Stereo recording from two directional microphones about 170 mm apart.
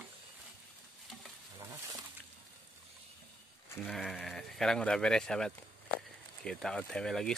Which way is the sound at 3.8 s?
Centre (ahead or behind).